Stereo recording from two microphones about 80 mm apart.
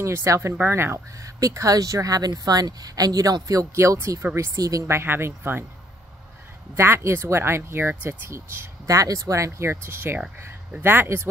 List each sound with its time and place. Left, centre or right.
0.0 s speech: right
0.6 s speech: right
4.8 s speech: right
6.7 s speech: right
8.8 s speech: right